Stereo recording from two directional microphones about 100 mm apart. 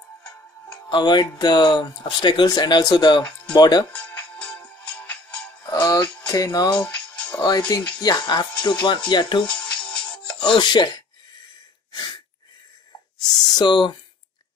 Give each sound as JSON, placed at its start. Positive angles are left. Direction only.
{"t": 0.8, "sound": "speech", "side_deg": 50}
{"t": 4.1, "sound": "music", "side_deg": 15}
{"t": 5.7, "sound": "music", "side_deg": 40}
{"t": 6.2, "sound": "speech", "side_deg": 35}
{"t": 6.7, "sound": "music", "side_deg": 10}
{"t": 7.4, "sound": "speech", "side_deg": 40}
{"t": 9.5, "sound": "music", "side_deg": 10}
{"t": 10.4, "sound": "speech", "side_deg": 50}
{"t": 11.9, "sound": "sneeze", "side_deg": 45}
{"t": 13.6, "sound": "speech", "side_deg": 50}